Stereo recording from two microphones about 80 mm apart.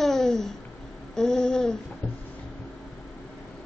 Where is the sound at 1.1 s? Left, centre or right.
Centre.